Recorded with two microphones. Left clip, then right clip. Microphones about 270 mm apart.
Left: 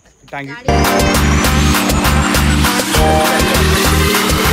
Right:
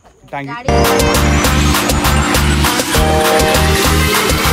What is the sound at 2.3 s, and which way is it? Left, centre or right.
Music, centre.